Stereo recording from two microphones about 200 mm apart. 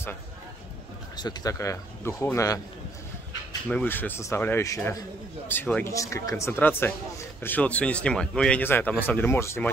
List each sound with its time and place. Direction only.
1.1 s speech: 20° left (ahead or behind)
3.6 s speech: 10° left (ahead or behind)